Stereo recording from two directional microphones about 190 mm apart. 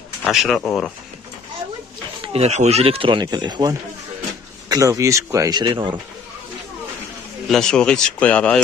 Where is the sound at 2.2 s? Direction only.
35° right (ahead or behind).